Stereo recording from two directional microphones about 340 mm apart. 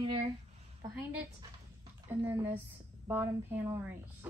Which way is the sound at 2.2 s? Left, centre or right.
Centre.